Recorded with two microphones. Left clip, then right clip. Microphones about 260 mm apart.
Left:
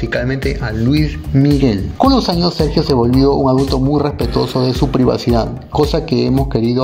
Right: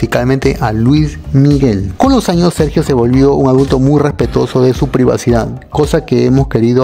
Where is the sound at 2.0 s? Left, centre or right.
Right.